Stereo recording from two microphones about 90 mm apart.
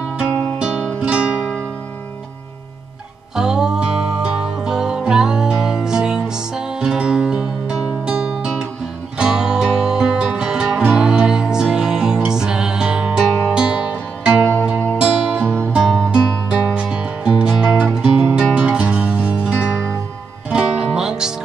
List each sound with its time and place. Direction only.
1.0 s music: 10° right (ahead or behind)
3.3 s music: 5° right (ahead or behind)
14.4 s music: 20° left (ahead or behind)
15.0 s music: 10° right (ahead or behind)